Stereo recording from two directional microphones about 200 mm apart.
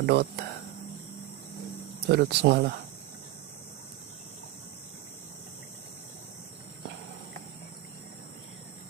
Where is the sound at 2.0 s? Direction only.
55° right (ahead or behind).